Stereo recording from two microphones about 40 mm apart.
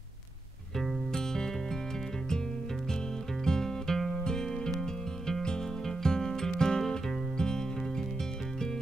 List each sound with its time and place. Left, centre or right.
0.7 s music: centre
3.4 s music: centre